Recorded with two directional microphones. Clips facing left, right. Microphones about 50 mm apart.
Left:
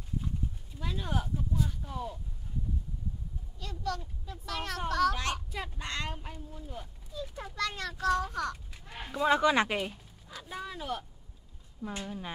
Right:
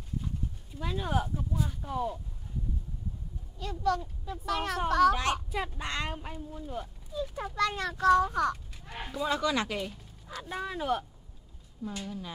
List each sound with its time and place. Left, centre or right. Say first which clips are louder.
0.7 s speech: right 4 dB; centre
3.5 s a child's voice: right 7 dB; centre
9.2 s speech: left 4 dB; left
10.5 s speech: right 6 dB; right
11.8 s speech: even; left